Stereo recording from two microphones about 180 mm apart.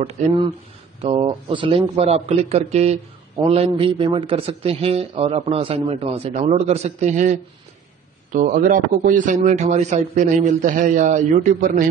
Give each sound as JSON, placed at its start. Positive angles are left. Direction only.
{"t": 1.0, "sound": "a man's voice", "side_deg": -30}